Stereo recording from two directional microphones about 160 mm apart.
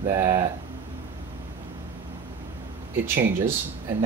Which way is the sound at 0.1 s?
20° right (ahead or behind).